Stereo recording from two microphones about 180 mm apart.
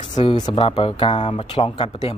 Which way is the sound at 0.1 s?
25° left (ahead or behind).